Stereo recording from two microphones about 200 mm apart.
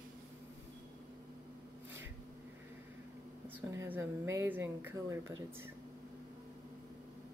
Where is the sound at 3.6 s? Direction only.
10° right (ahead or behind).